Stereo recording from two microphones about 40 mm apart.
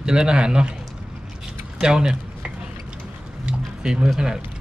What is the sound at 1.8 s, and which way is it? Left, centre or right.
Speech, centre.